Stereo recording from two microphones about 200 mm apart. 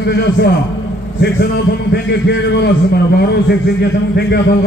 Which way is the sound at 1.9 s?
60° left (ahead or behind).